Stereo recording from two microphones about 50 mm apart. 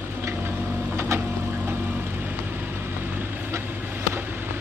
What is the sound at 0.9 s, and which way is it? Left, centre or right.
Printer, right.